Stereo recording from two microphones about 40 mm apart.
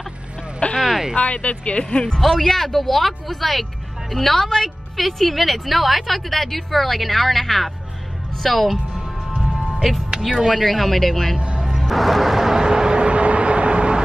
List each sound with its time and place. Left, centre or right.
0.7 s a sound: centre
1.1 s speech: left
2.1 s a woman's voice: centre
8.9 s music: right
9.8 s a woman's voice: centre
11.3 s music: right
11.6 s music: centre; by 14.0 s right